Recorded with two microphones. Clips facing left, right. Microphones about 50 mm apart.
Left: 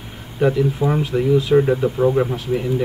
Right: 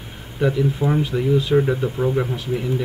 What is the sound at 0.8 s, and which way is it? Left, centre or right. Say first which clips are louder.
Speech: left 2 dB; centre.